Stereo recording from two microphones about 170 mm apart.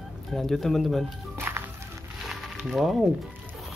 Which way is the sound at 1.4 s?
15° right (ahead or behind).